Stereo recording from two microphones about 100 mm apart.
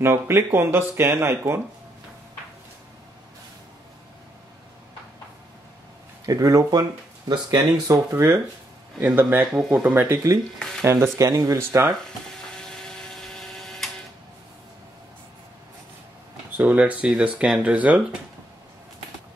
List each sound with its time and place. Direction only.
0.0 s speech: 25° right (ahead or behind)
6.2 s speech: 35° right (ahead or behind)
7.9 s speech: 25° right (ahead or behind)
11.1 s speech: 35° right (ahead or behind)
12.5 s a sound: 5° left (ahead or behind)
16.5 s speech: 15° right (ahead or behind)